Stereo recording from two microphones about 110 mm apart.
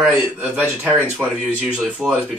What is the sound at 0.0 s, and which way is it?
Speech, 10° right (ahead or behind).